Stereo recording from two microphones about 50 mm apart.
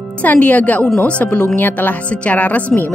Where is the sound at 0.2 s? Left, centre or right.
Left.